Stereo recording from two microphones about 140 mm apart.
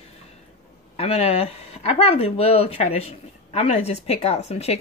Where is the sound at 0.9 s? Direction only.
45° left (ahead or behind).